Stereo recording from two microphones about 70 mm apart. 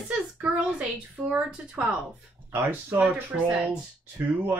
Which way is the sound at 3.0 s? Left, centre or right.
Right.